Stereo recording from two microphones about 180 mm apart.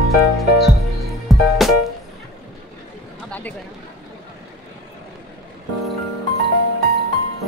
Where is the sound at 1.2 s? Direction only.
Centre (ahead or behind).